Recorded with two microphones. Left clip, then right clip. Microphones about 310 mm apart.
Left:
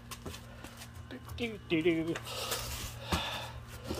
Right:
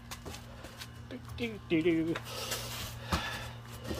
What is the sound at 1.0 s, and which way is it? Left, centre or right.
Speech, centre.